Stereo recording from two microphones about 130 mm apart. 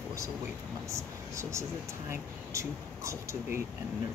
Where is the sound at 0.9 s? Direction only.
20° right (ahead or behind).